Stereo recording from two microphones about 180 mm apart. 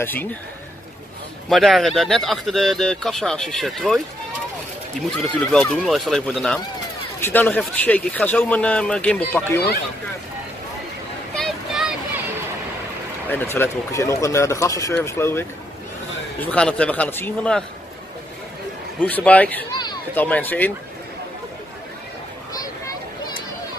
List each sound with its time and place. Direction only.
0.0 s speech: 10° left (ahead or behind)
1.5 s speech: centre (ahead or behind)
5.1 s speech: 5° left (ahead or behind)
11.3 s a sound: centre (ahead or behind)
13.3 s speech: 10° left (ahead or behind)
18.9 s speech: 10° left (ahead or behind)